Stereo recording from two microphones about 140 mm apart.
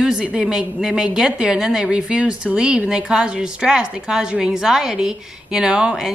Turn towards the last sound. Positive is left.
turn(degrees=-5)  # may be behind; listen again after turning